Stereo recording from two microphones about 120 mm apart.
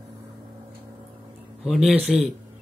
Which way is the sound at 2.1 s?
5° right (ahead or behind).